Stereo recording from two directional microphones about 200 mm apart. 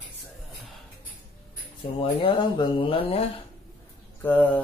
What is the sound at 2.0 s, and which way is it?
Speech, 25° left (ahead or behind).